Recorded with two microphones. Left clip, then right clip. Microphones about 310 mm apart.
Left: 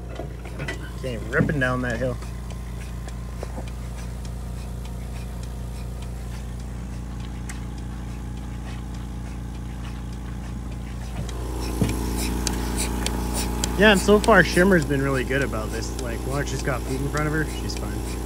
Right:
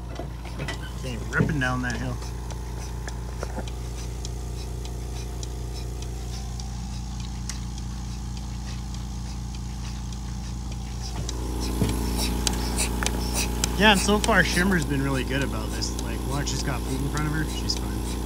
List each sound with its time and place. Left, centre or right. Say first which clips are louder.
1.0 s speech: left 3 dB; centre
11.8 s a sound: left 1 dB; centre
16.1 s speech: left 2 dB; centre
17.7 s speech: left 1 dB; right